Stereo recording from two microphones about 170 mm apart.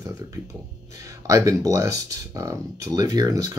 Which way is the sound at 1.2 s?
20° right (ahead or behind).